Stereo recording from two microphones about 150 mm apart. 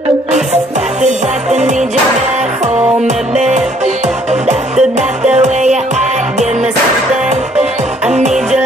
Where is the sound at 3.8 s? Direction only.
50° right (ahead or behind).